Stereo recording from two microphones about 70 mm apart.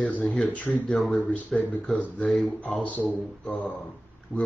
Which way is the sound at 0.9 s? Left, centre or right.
Centre.